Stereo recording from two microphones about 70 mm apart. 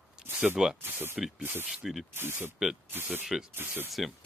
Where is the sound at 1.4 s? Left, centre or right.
Right.